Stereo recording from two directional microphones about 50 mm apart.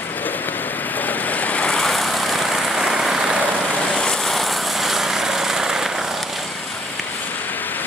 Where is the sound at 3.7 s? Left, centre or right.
Centre.